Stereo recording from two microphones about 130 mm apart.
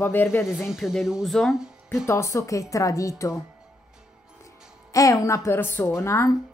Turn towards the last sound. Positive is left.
turn(degrees=25)  # may be behind; listen again after turning